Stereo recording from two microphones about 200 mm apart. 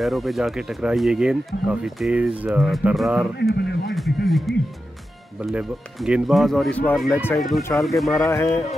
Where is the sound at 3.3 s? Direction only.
55° left (ahead or behind).